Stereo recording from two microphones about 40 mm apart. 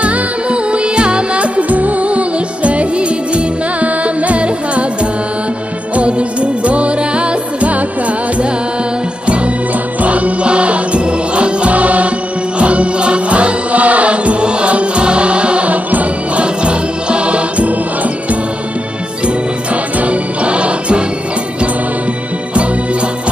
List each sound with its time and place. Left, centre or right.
0.0 s music: right
5.9 s music: right
10.0 s music: right
20.0 s music: right